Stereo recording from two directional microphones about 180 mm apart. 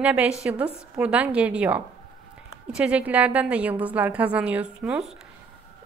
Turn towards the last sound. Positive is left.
turn(degrees=-5)  # may be behind; listen again after turning